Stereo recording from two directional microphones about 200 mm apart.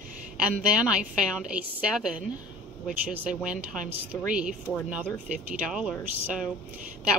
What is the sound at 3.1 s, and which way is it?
A woman's voice, 5° right (ahead or behind).